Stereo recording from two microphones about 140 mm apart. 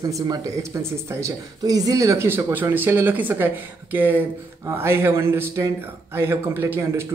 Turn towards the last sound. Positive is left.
turn(degrees=-15)  # may be behind; listen again after turning